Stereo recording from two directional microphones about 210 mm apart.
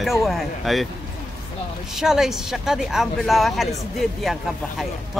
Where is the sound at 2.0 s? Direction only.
Centre (ahead or behind).